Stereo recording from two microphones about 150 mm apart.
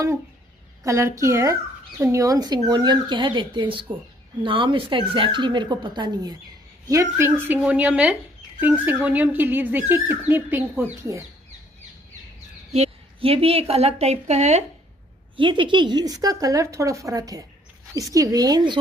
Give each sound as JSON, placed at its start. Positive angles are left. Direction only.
{"t": 0.8, "sound": "speech", "side_deg": -20}
{"t": 6.9, "sound": "speech", "side_deg": -20}
{"t": 12.7, "sound": "a woman's voice", "side_deg": -45}
{"t": 15.3, "sound": "speech", "side_deg": -35}